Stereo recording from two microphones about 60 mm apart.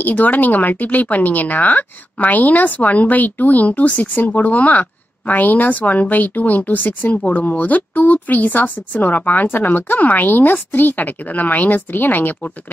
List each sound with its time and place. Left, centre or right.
0.0 s a woman's voice: left